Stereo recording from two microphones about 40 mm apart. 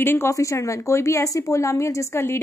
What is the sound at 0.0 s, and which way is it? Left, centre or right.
Speech, left.